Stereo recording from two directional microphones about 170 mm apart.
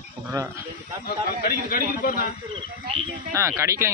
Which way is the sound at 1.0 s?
65° left (ahead or behind).